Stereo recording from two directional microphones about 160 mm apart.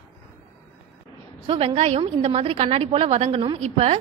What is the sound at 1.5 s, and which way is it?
A woman's voice, 35° right (ahead or behind).